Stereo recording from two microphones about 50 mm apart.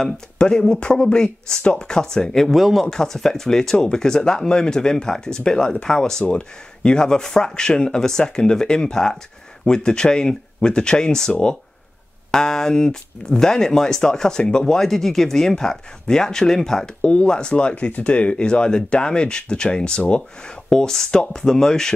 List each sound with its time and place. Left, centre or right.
0.0 s speech: centre
17.0 s speech: left